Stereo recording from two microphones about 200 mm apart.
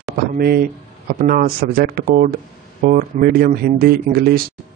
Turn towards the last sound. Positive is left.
turn(degrees=-50)  # may be behind; listen again after turning